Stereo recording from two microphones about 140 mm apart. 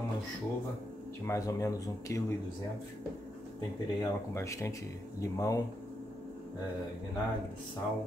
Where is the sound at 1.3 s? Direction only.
25° left (ahead or behind).